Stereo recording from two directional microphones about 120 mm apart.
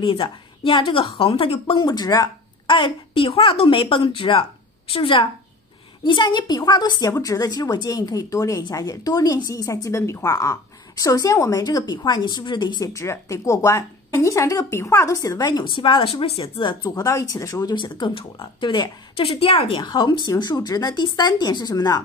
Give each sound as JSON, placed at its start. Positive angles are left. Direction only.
{"t": 0.0, "sound": "speech", "side_deg": 50}
{"t": 1.9, "sound": "a woman's voice", "side_deg": 35}
{"t": 2.7, "sound": "a woman's voice", "side_deg": 50}
{"t": 12.9, "sound": "a woman's voice", "side_deg": 25}
{"t": 15.7, "sound": "a woman's voice", "side_deg": 45}
{"t": 17.7, "sound": "a woman's voice", "side_deg": 40}
{"t": 19.2, "sound": "speech", "side_deg": 50}
{"t": 19.8, "sound": "a woman's voice", "side_deg": 35}